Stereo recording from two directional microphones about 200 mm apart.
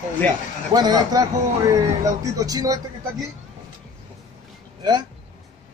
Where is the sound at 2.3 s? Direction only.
15° right (ahead or behind).